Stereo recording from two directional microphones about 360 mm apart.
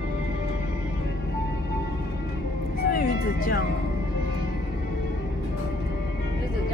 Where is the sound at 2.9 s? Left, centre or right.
Left.